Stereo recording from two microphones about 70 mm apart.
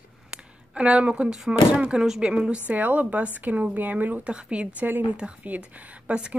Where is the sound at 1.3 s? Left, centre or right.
Centre.